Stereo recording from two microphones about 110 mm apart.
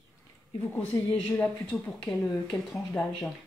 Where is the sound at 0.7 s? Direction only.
10° left (ahead or behind).